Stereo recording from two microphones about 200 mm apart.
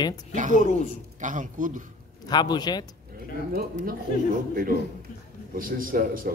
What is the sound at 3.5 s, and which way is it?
A man's voice, 45° right (ahead or behind).